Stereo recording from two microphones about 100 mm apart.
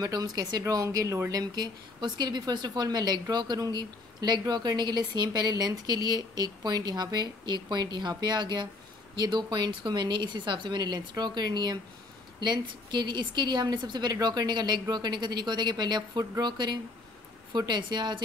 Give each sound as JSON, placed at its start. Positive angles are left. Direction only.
{"t": 0.0, "sound": "a woman's voice", "side_deg": -40}